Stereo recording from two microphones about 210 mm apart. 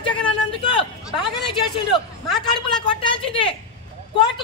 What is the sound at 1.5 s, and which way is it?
Speech, 25° left (ahead or behind).